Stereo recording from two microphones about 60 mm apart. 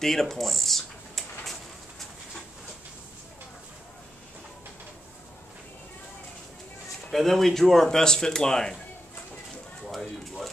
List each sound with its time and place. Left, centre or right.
0.0 s speech: centre
7.1 s speech: centre
9.8 s speech: centre